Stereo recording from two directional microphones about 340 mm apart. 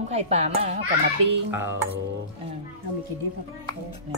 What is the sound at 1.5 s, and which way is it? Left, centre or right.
Speech, centre.